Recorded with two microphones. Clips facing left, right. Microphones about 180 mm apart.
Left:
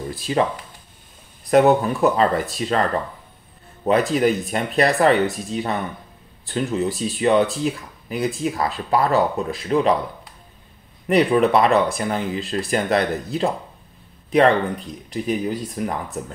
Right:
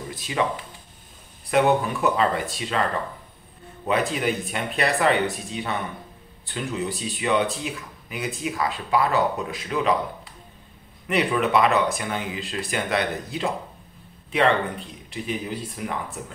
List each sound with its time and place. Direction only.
0.3 s speech: 40° left (ahead or behind)
1.5 s speech: 40° left (ahead or behind)
3.8 s speech: 40° left (ahead or behind)
11.1 s speech: 35° left (ahead or behind)
15.0 s speech: 40° left (ahead or behind)